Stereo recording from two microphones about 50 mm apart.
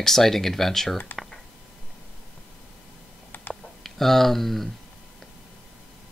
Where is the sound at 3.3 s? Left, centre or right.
Left.